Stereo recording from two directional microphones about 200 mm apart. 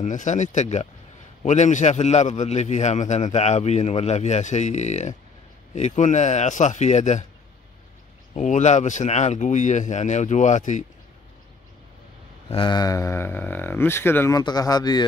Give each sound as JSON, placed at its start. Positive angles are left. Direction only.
{"t": 0.0, "sound": "a man's voice", "side_deg": 35}
{"t": 8.4, "sound": "a man's voice", "side_deg": 35}
{"t": 12.4, "sound": "speech", "side_deg": 25}